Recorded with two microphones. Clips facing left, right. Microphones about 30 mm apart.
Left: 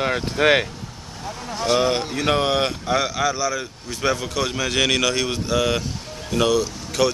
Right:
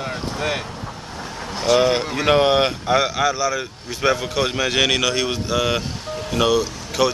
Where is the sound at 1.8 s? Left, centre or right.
Centre.